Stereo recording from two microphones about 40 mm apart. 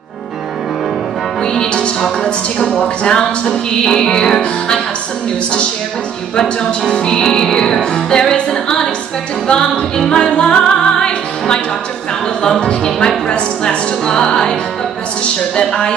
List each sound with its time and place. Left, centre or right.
1.4 s music: centre
6.9 s music: left